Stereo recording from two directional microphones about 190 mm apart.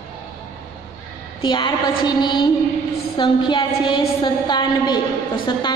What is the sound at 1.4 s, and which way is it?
A woman's voice, 25° left (ahead or behind).